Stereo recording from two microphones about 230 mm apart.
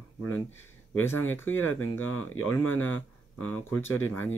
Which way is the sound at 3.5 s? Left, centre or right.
Centre.